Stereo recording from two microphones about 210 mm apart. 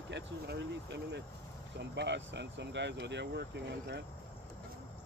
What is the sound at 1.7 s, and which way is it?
Speech, 55° right (ahead or behind).